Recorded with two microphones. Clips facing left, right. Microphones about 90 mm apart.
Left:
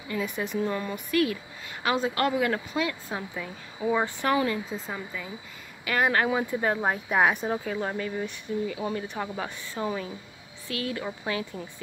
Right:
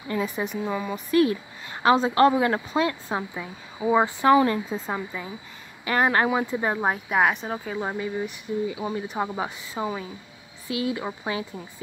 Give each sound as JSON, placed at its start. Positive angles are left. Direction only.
{"t": 0.2, "sound": "speech", "side_deg": -20}
{"t": 0.6, "sound": "speech", "side_deg": -5}
{"t": 0.9, "sound": "a woman's voice", "side_deg": -30}
{"t": 3.3, "sound": "speech", "side_deg": -20}
{"t": 4.5, "sound": "a woman's voice", "side_deg": -40}
{"t": 7.1, "sound": "speech", "side_deg": 0}
{"t": 9.2, "sound": "speech", "side_deg": -20}